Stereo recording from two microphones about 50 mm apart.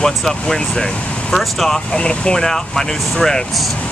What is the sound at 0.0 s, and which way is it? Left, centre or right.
Speech, centre.